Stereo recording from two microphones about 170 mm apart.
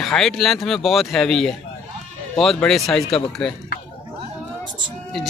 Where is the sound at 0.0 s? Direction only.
Centre (ahead or behind).